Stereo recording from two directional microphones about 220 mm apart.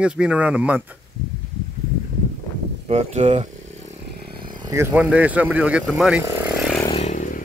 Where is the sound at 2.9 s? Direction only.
30° right (ahead or behind); by 6.2 s 5° right (ahead or behind).